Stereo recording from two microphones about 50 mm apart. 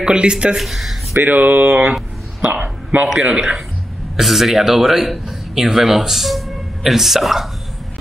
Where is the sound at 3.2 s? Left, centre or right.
Right.